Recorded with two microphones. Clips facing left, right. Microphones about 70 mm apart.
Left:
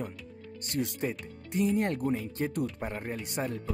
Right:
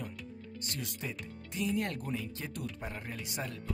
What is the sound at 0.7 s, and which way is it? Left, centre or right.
Speech, left.